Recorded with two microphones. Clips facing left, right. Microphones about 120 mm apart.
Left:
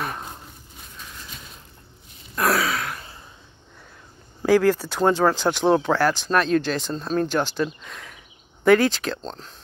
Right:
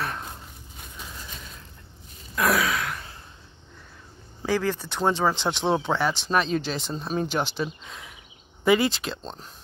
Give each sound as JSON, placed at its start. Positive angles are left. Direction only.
{"t": 2.3, "sound": "gasp", "side_deg": 0}
{"t": 4.4, "sound": "speech", "side_deg": 5}